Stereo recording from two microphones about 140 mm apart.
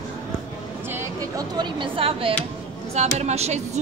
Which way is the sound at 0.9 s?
20° right (ahead or behind).